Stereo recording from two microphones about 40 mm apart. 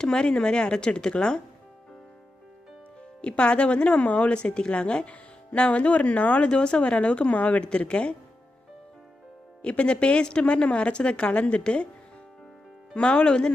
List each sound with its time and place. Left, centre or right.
0.0 s speech: left
3.2 s speech: left
9.6 s speech: left
12.9 s speech: left